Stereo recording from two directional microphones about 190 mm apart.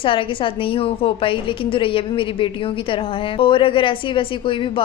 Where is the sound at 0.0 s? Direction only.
25° left (ahead or behind).